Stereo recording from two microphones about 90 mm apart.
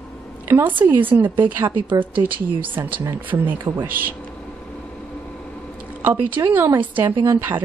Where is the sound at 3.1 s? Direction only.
20° right (ahead or behind).